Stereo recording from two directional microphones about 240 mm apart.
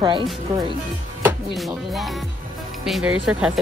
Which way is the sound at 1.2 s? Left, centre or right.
Centre.